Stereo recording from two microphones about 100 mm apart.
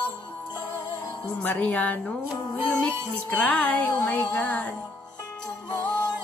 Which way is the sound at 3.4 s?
15° left (ahead or behind).